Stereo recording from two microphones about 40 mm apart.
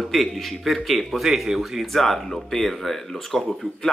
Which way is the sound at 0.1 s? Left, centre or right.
Centre.